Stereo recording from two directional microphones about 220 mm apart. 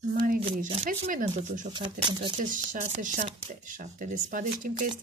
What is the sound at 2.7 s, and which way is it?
Speech, 30° right (ahead or behind).